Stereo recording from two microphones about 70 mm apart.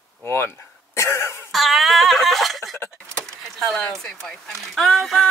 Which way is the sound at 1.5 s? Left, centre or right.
Centre.